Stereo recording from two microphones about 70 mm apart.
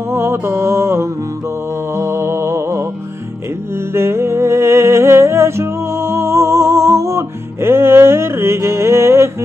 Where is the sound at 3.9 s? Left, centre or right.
Right.